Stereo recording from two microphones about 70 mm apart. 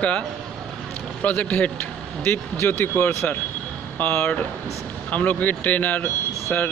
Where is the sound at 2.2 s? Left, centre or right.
Left.